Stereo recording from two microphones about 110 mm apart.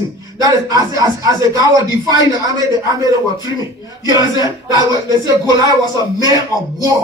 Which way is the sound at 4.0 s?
35° right (ahead or behind).